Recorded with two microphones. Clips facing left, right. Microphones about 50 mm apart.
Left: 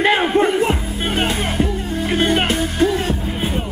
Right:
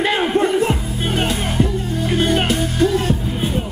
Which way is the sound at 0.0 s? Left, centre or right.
Left.